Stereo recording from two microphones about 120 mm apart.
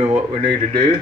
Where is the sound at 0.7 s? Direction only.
40° right (ahead or behind).